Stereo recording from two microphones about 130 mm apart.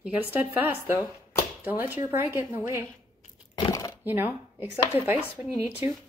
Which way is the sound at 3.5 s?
25° left (ahead or behind).